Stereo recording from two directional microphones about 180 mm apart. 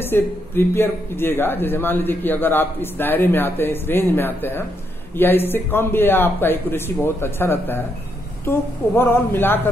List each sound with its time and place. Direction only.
0.0 s a man's voice: 10° left (ahead or behind)